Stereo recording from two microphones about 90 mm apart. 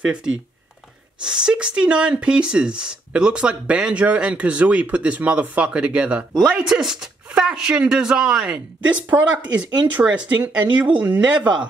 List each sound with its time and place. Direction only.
0.0 s speech: 10° right (ahead or behind)